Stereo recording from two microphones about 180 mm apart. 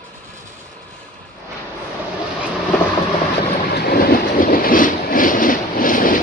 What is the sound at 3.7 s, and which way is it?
Train, 55° left (ahead or behind).